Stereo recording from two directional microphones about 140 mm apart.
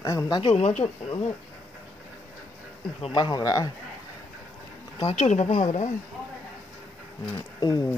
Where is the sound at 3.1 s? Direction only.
30° left (ahead or behind).